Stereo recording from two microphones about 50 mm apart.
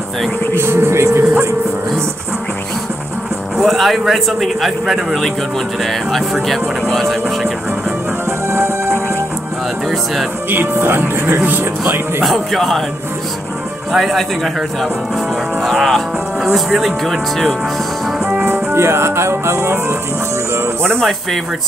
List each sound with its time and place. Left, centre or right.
0.6 s speech: right
3.6 s a man's voice: centre
6.4 s a man's voice: centre
8.3 s music: right
10.5 s speech: right
12.2 s a man's voice: centre
13.9 s a man's voice: centre
18.4 s music: right